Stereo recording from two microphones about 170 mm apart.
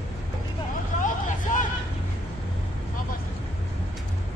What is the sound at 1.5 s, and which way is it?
Vehicle, 50° left (ahead or behind).